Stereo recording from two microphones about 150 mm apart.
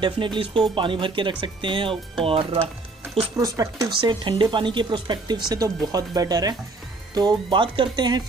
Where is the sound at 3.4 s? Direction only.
20° right (ahead or behind).